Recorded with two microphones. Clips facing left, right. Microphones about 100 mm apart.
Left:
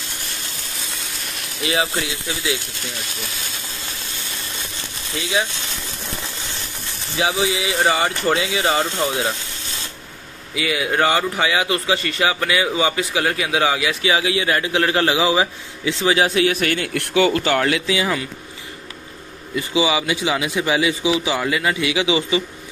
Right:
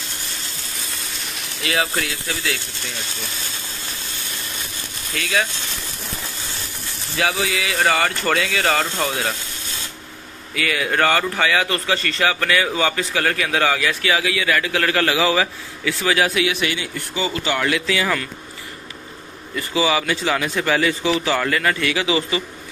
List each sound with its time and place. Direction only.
1.6 s speech: 20° left (ahead or behind)
5.1 s speech: 20° left (ahead or behind)
7.2 s speech: 20° left (ahead or behind)
9.0 s a sound: 20° left (ahead or behind)
10.5 s a man's voice: 15° left (ahead or behind)
16.4 s a man's voice: 45° left (ahead or behind)
16.9 s speech: 75° left (ahead or behind)
17.3 s a man's voice: 45° left (ahead or behind)
17.6 s speech: 25° left (ahead or behind)
19.5 s a man's voice: 15° left (ahead or behind)